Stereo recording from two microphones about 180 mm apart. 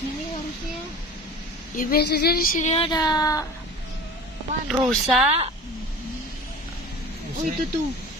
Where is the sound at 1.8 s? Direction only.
60° left (ahead or behind); by 2.9 s 40° left (ahead or behind).